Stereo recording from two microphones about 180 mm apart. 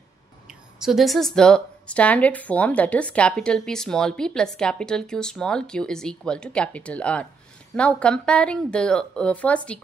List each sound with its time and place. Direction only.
0.5 s a woman's voice: centre (ahead or behind)